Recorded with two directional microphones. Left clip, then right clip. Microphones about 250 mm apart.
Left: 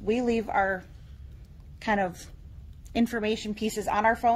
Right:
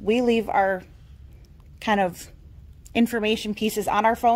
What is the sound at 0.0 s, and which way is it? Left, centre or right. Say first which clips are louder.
A woman's voice: right 6 dB; right.